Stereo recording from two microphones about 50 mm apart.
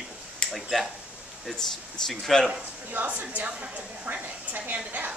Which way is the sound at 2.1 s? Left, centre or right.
Centre.